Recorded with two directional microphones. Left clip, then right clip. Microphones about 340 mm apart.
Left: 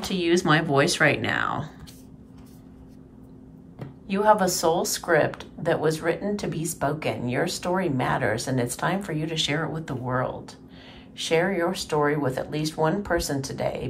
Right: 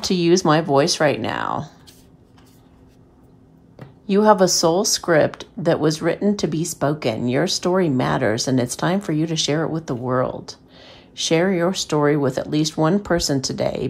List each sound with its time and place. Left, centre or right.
0.0 s speech: centre
4.1 s speech: centre